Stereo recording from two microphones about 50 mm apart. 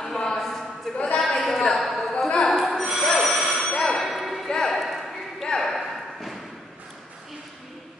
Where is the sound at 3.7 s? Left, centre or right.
Centre.